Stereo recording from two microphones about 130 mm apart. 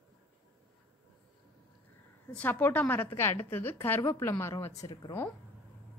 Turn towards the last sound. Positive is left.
turn(degrees=30)  # may be behind; listen again after turning